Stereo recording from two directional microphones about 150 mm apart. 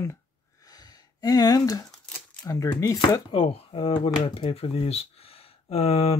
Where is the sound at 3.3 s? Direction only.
35° left (ahead or behind).